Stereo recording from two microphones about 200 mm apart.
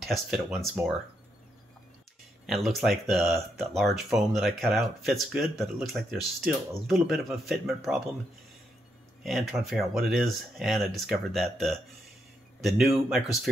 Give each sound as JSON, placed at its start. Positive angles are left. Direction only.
{"t": 0.0, "sound": "speech", "side_deg": 0}
{"t": 2.4, "sound": "speech", "side_deg": 0}
{"t": 9.2, "sound": "speech", "side_deg": 0}